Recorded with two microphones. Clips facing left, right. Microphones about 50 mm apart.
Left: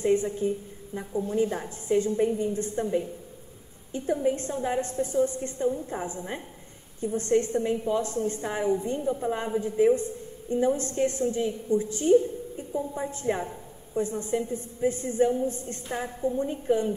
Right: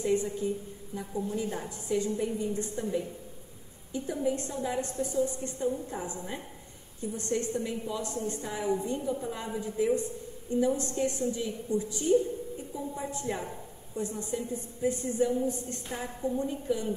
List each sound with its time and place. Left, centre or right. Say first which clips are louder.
0.0 s a woman's voice: left 4 dB; left